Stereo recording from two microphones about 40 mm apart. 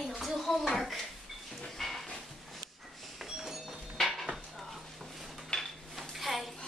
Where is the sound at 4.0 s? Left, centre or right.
Centre.